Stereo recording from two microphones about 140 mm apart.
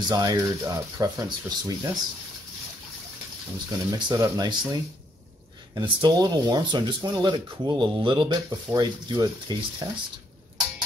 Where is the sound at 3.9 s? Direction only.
25° right (ahead or behind).